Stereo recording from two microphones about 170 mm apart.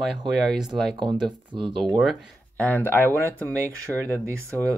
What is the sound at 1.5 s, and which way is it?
Speech, 30° right (ahead or behind).